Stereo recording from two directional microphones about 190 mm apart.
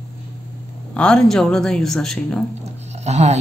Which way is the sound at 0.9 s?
5° left (ahead or behind).